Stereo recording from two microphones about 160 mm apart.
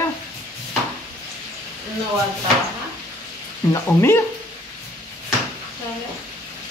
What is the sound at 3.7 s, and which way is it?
Speech, 15° left (ahead or behind).